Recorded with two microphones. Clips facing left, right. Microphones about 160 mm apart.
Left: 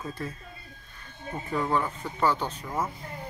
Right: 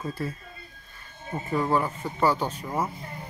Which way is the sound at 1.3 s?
10° right (ahead or behind).